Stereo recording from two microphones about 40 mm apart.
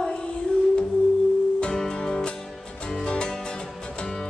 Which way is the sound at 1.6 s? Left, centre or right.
Centre.